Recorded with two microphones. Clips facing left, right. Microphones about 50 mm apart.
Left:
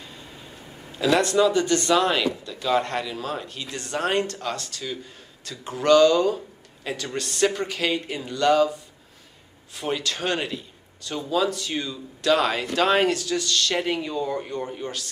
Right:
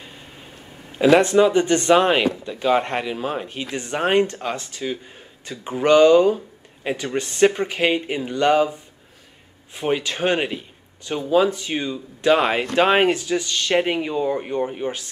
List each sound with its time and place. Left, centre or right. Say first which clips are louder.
0.9 s speech: right 6 dB; right